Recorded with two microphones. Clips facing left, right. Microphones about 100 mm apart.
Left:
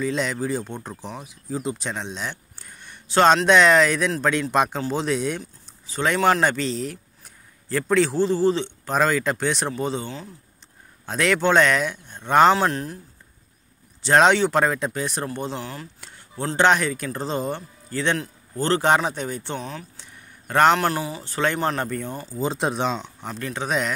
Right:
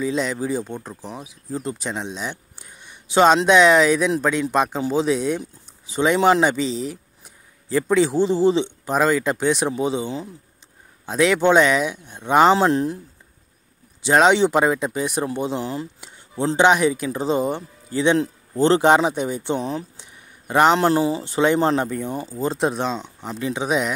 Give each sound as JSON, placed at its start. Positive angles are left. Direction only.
{"t": 0.0, "sound": "speech", "side_deg": -5}
{"t": 5.4, "sound": "speech", "side_deg": -15}
{"t": 6.4, "sound": "speech", "side_deg": -5}
{"t": 8.9, "sound": "speech", "side_deg": -5}
{"t": 11.1, "sound": "speech", "side_deg": -5}
{"t": 12.5, "sound": "speech", "side_deg": -20}
{"t": 14.0, "sound": "speech", "side_deg": -5}
{"t": 20.1, "sound": "a sound", "side_deg": -10}
{"t": 20.7, "sound": "speech", "side_deg": -25}
{"t": 22.3, "sound": "speech", "side_deg": 0}